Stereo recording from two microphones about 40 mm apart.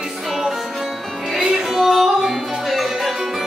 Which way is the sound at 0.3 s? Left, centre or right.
Centre.